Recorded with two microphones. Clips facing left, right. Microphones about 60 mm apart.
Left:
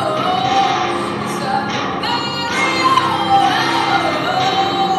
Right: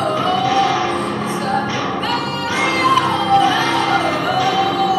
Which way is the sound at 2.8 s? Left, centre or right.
Right.